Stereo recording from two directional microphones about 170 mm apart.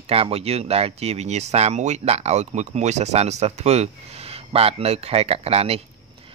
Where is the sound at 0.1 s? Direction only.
35° right (ahead or behind).